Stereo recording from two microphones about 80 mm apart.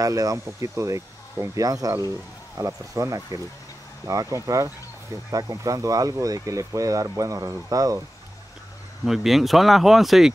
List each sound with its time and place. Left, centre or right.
0.0 s speech: right
9.0 s speech: centre